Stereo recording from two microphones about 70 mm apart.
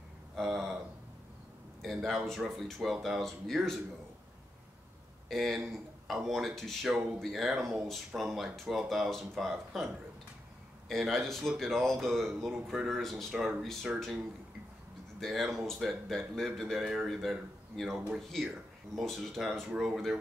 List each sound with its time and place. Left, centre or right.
0.4 s speech: centre
1.8 s speech: centre
5.3 s a man's voice: centre
10.9 s speech: centre
15.1 s speech: centre